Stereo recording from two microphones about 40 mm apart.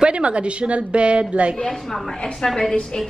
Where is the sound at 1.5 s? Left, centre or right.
Centre.